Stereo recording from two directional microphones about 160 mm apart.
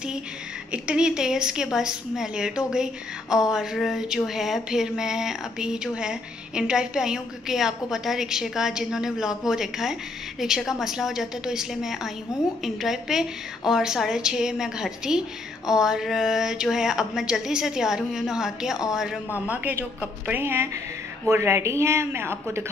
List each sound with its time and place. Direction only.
0.7 s a woman's voice: 5° right (ahead or behind)